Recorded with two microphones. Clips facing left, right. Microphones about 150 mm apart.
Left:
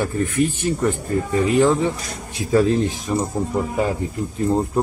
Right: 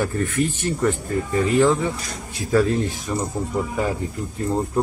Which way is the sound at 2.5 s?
20° left (ahead or behind).